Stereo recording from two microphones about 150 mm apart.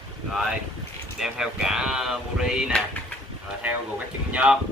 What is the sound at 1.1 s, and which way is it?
Speech, 5° right (ahead or behind).